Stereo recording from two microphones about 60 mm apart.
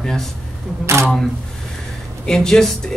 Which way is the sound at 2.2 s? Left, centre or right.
Centre.